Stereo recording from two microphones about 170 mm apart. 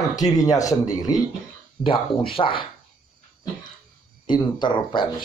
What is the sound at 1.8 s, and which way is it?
Speech, 30° left (ahead or behind).